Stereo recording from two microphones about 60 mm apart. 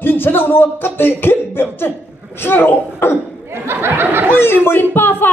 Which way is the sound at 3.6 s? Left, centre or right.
Right.